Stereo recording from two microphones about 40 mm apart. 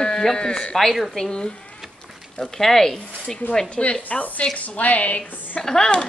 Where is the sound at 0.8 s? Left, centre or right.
Centre.